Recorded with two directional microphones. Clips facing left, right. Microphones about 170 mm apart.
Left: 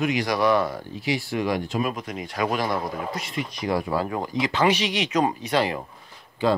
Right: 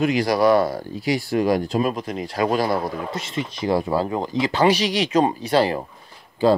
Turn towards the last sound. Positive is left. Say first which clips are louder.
# right 5 dB
turn(degrees=-30)  # may be behind; listen again after turning